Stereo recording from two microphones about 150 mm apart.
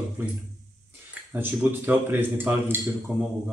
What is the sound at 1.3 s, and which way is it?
Speech, 15° right (ahead or behind).